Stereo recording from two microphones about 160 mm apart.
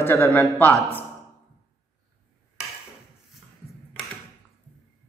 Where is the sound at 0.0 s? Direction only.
15° left (ahead or behind).